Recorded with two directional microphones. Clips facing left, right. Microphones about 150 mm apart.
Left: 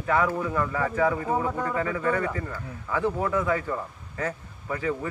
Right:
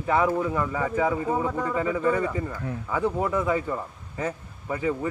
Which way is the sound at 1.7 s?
15° right (ahead or behind).